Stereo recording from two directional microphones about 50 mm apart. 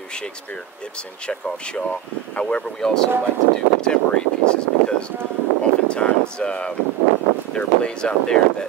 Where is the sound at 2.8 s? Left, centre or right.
Centre.